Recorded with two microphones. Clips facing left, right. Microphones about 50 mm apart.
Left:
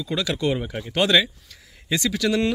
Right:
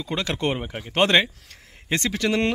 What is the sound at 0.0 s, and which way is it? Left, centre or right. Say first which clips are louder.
Speech: left 1 dB; right.